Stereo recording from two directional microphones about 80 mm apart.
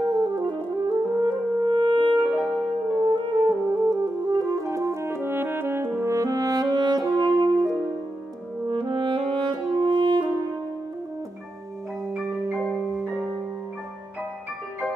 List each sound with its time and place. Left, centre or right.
0.0 s french horn: right
3.0 s music: right
8.6 s french horn: right
12.1 s music: centre